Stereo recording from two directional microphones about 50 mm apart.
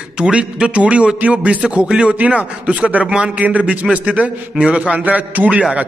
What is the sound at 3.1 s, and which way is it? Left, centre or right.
Speech, centre.